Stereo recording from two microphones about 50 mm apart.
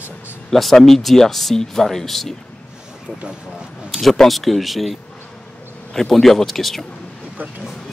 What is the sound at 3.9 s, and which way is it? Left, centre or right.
Speech, centre.